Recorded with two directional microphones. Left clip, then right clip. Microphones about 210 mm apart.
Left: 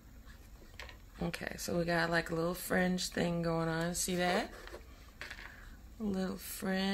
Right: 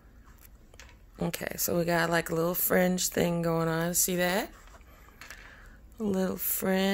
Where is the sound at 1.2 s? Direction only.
50° right (ahead or behind).